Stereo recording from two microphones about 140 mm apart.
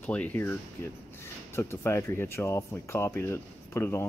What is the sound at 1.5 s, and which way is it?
Speech, 20° left (ahead or behind).